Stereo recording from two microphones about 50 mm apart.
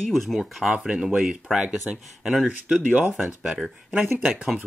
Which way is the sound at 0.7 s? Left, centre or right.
Centre.